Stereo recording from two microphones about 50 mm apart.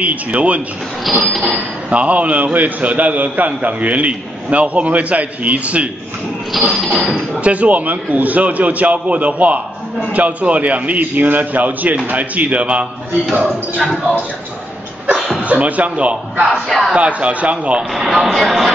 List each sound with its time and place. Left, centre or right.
0.0 s a man's voice: right
1.9 s a man's voice: right
6.7 s speech: centre
7.3 s a man's voice: right
13.3 s speech: centre
15.1 s a sound: centre
15.4 s a man's voice: right
16.5 s speech: centre
16.9 s a man's voice: right
17.7 s speech: centre